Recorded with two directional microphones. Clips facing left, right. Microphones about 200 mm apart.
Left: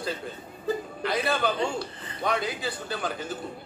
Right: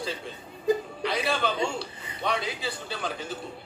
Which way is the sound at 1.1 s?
Centre (ahead or behind).